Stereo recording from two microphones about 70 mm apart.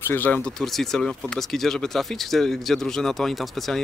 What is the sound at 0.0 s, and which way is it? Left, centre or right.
Speech, left.